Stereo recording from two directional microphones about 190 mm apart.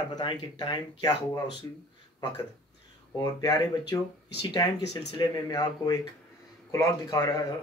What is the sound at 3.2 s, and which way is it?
Speech, 20° left (ahead or behind).